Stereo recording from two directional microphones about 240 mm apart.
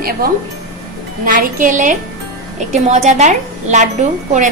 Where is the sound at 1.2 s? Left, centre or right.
Right.